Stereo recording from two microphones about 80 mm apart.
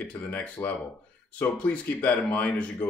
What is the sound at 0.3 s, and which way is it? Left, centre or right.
Speech, left.